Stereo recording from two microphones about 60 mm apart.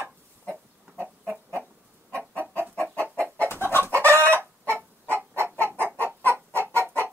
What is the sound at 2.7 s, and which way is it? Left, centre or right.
Chicken, left.